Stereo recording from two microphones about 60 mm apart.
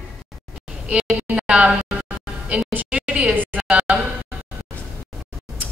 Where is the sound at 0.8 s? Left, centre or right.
Centre.